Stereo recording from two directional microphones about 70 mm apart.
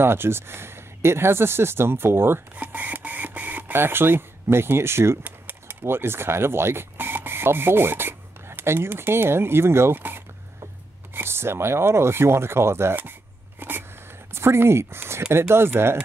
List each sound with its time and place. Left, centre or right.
0.0 s speech: right
5.2 s speech: right
13.6 s a sound: right
15.3 s speech: right